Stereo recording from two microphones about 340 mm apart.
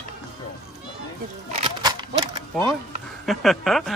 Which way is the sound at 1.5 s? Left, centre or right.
Centre.